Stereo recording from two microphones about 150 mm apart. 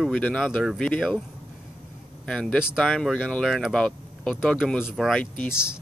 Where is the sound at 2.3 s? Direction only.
5° left (ahead or behind).